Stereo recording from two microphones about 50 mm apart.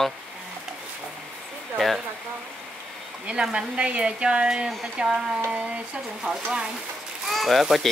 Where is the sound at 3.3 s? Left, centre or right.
Right.